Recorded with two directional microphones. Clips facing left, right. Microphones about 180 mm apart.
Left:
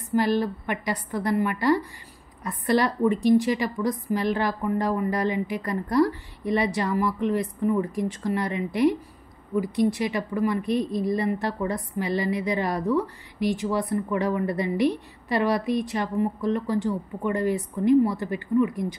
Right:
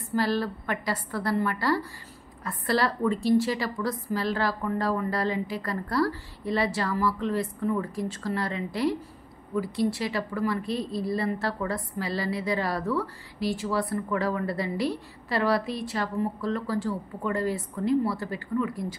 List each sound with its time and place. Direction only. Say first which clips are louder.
0.0 s a woman's voice: left 3 dB; 20° left (ahead or behind)